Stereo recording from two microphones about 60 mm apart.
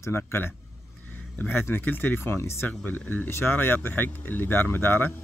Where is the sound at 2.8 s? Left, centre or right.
Left.